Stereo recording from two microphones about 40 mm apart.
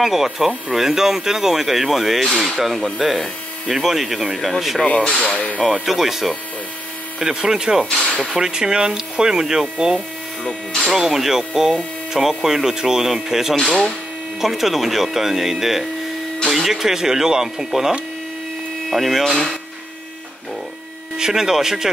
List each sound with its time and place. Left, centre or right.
0.0 s speech: centre
4.8 s rub: left
5.7 s speech: centre
11.0 s speech: centre
13.6 s speech: centre
14.4 s speech: centre
18.9 s speech: centre
21.2 s speech: centre